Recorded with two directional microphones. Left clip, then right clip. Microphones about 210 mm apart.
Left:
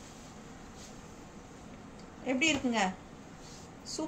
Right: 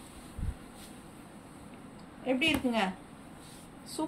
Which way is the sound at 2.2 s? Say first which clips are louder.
Right 1 dB; 15° left (ahead or behind).